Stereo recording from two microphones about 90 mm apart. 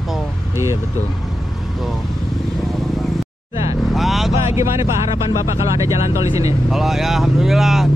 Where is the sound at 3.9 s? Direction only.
Centre (ahead or behind).